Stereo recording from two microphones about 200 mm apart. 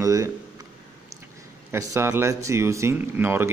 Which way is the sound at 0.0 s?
15° right (ahead or behind).